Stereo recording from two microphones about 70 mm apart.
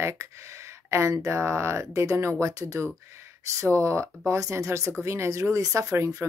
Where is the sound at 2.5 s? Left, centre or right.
Right.